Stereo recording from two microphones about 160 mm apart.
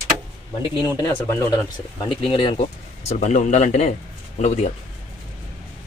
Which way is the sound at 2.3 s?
35° left (ahead or behind).